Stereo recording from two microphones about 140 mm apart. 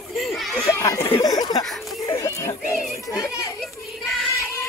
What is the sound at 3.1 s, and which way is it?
Children playing, 25° left (ahead or behind).